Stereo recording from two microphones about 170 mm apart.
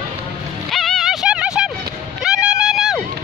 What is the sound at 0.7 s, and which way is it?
Music, centre (ahead or behind).